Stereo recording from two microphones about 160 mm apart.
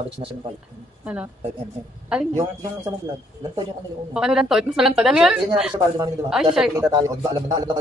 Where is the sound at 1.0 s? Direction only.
10° right (ahead or behind).